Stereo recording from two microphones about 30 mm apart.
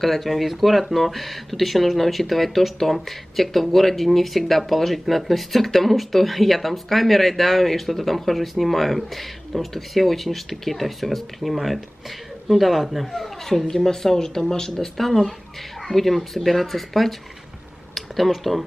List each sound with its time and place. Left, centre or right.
0.0 s speech: centre
13.7 s speech: centre
14.7 s speech: centre